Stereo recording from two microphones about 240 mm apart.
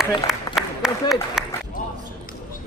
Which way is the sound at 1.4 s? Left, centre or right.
Centre.